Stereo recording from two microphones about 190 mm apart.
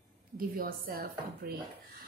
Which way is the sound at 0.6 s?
50° right (ahead or behind).